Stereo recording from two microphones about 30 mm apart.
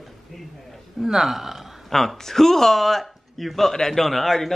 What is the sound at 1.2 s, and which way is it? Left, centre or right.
Speech, centre.